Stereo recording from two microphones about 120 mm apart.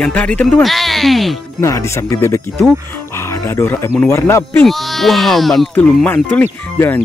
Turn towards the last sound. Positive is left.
turn(degrees=15)  # may be behind; listen again after turning